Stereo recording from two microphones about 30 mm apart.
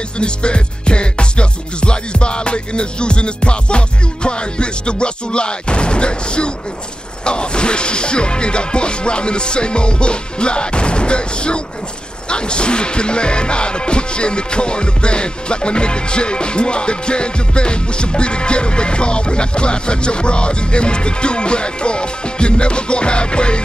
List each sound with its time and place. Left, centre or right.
0.2 s music: left